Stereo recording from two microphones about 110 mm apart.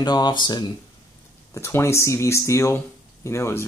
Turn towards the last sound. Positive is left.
turn(degrees=25)  # may be behind; listen again after turning